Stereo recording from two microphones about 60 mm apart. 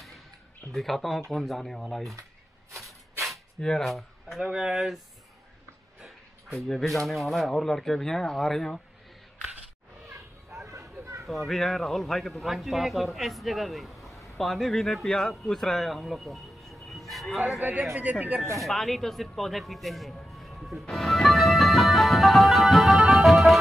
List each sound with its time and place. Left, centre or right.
0.7 s speech: centre
2.7 s rub: centre
3.8 s speech: centre
4.5 s speech: centre
6.0 s a sound: centre
7.1 s speech: centre
10.6 s a sound: right
11.2 s a man's voice: centre
17.6 s speech: right
18.6 s a sound: centre